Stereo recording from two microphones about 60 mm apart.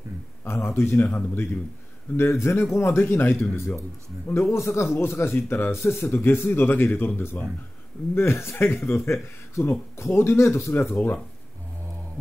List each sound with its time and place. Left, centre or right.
0.4 s speech: left
0.9 s speech: left
2.1 s speech: left
10.7 s speech: left